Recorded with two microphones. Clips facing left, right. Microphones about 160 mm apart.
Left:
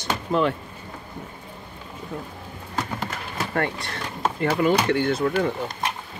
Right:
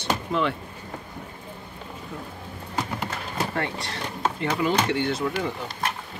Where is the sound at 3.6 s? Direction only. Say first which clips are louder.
Left 3 dB; 50° left (ahead or behind).